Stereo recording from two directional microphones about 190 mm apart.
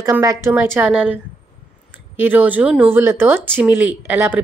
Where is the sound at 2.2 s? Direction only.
10° right (ahead or behind).